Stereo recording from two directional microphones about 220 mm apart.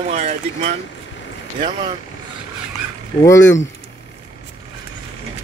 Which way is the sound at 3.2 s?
15° left (ahead or behind).